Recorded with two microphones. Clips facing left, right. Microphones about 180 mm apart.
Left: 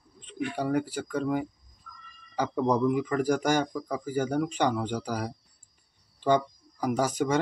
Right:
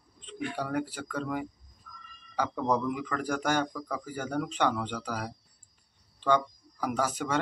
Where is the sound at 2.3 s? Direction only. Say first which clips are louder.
Left 3 dB; 15° left (ahead or behind).